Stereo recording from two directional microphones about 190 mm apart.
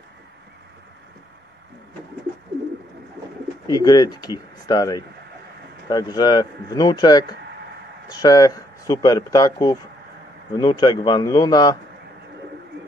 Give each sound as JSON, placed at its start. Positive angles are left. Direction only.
{"t": 3.6, "sound": "speech", "side_deg": 20}